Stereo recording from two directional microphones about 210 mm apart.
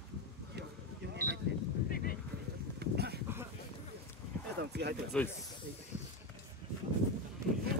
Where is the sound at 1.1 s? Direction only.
50° right (ahead or behind).